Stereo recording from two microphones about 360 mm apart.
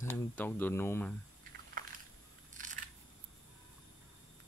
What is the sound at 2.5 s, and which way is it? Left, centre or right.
Scissors, right.